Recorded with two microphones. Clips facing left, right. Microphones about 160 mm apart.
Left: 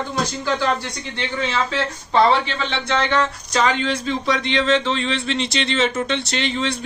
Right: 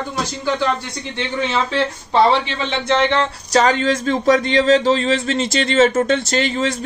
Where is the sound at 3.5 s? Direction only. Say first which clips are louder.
Right 5 dB; 40° right (ahead or behind).